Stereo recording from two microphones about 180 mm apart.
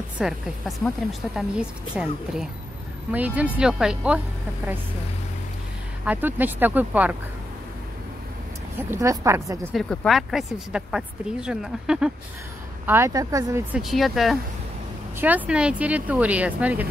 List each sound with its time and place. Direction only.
0.2 s speech: centre (ahead or behind)
6.0 s speech: 10° right (ahead or behind)
9.0 s speech: 15° right (ahead or behind)
9.7 s speech: 5° left (ahead or behind)
12.8 s speech: 15° right (ahead or behind)
13.7 s speech: centre (ahead or behind)